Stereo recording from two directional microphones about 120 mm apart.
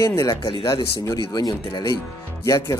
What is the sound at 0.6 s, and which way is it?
Speech, 30° left (ahead or behind).